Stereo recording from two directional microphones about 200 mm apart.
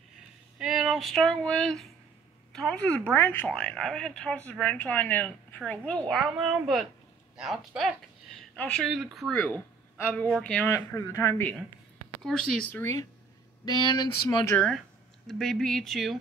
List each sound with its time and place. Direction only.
0.6 s speech: 5° right (ahead or behind)
13.7 s speech: 20° left (ahead or behind)
14.5 s speech: 5° left (ahead or behind)